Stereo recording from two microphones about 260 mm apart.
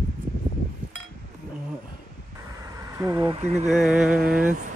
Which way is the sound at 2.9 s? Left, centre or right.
Centre.